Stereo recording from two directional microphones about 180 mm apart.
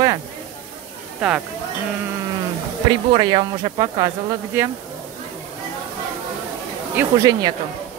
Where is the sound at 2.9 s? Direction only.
25° right (ahead or behind).